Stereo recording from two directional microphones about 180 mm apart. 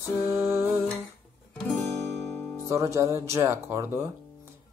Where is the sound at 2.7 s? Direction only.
15° right (ahead or behind).